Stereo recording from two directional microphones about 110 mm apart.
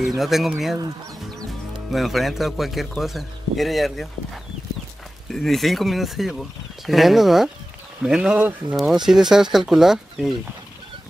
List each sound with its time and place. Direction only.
0.2 s speech: centre (ahead or behind)
1.9 s speech: centre (ahead or behind)
5.3 s speech: 5° left (ahead or behind); by 8.7 s 15° right (ahead or behind)
8.7 s speech: 5° right (ahead or behind)